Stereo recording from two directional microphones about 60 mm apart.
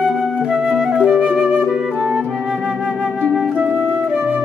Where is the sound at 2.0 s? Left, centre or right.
Right.